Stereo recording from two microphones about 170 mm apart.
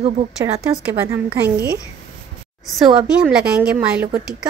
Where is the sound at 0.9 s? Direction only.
15° right (ahead or behind).